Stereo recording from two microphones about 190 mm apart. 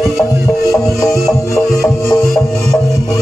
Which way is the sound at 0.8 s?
15° left (ahead or behind).